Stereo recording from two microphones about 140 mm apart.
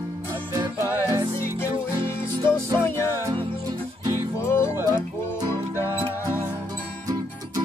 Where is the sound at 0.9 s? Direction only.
25° right (ahead or behind).